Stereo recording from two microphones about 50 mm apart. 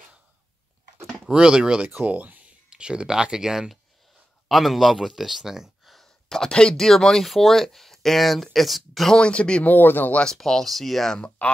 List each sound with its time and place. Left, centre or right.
1.3 s speech: centre
2.0 s speech: right
2.7 s speech: centre
4.5 s speech: centre
5.9 s speech: centre
9.1 s speech: left
9.7 s speech: left
10.2 s speech: centre
11.1 s speech: left